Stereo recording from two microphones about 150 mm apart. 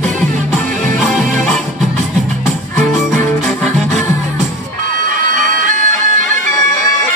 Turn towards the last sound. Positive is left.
turn(degrees=-55)  # may be behind; listen again after turning